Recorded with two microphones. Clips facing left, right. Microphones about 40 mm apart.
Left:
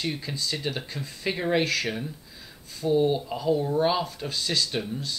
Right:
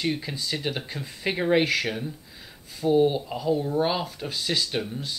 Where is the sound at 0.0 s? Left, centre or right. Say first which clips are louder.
Right 2 dB; centre.